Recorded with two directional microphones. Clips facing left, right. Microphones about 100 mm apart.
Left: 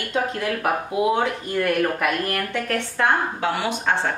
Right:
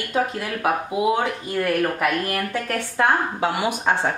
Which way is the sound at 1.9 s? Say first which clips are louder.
Right 1 dB; 5° right (ahead or behind).